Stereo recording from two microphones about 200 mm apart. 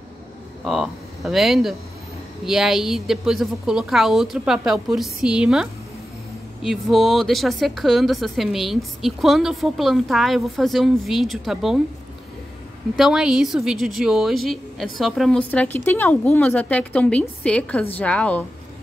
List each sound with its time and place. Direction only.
0.7 s speech: centre (ahead or behind)
12.9 s a woman's voice: centre (ahead or behind)